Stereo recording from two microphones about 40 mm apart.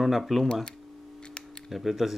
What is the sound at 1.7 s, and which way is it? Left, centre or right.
Speech, centre.